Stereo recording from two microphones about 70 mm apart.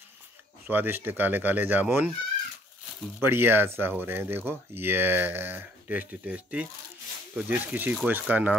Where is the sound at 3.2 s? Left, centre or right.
Right.